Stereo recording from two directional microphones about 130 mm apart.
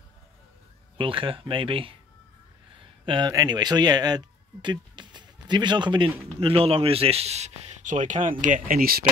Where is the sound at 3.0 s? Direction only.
40° right (ahead or behind).